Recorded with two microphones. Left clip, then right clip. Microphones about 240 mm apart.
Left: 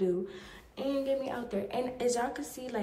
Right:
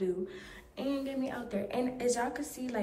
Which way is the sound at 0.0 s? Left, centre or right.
Centre.